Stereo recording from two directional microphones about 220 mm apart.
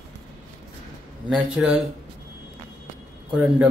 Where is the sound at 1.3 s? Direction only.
5° right (ahead or behind).